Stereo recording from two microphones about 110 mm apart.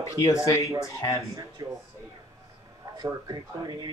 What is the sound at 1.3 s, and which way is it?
Speech, 30° right (ahead or behind).